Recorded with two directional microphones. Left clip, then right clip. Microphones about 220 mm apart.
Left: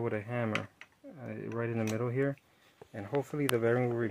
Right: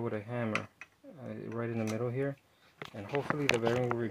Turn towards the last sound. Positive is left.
turn(degrees=25)  # may be behind; listen again after turning